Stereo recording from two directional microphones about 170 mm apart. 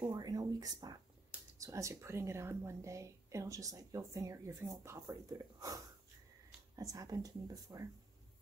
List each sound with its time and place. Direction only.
0.0 s a woman's voice: 25° right (ahead or behind)
6.8 s speech: 20° right (ahead or behind)